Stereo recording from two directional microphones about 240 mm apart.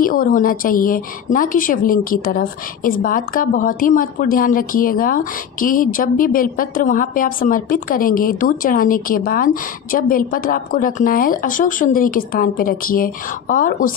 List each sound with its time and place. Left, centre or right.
0.0 s a woman's voice: left